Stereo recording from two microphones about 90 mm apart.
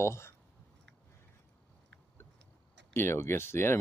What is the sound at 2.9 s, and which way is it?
Speech, 30° left (ahead or behind).